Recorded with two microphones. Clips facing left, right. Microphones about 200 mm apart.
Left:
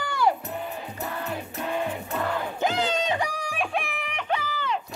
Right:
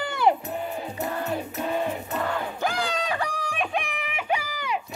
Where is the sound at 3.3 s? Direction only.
10° left (ahead or behind).